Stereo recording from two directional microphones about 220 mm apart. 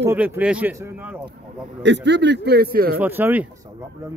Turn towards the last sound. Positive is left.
turn(degrees=-10)  # may be behind; listen again after turning